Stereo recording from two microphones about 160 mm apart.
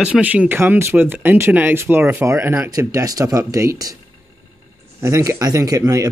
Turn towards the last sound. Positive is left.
turn(degrees=-20)  # may be behind; listen again after turning